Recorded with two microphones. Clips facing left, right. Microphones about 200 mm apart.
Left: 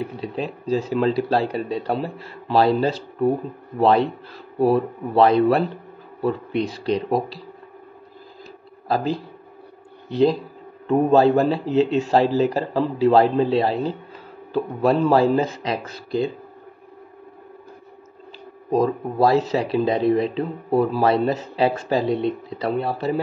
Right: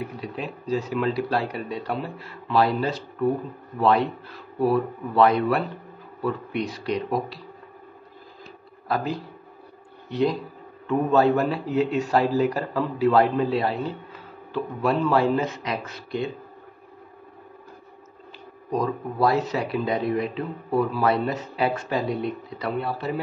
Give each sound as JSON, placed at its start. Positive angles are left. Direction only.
{"t": 0.2, "sound": "a man's voice", "side_deg": 30}
{"t": 4.6, "sound": "a man's voice", "side_deg": 30}
{"t": 8.8, "sound": "a man's voice", "side_deg": 30}
{"t": 18.7, "sound": "speech", "side_deg": 30}